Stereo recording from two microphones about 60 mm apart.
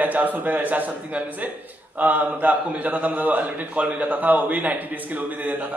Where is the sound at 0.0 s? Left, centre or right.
Right.